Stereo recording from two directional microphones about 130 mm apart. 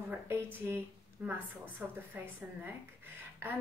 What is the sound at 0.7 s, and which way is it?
A woman's voice, 15° right (ahead or behind).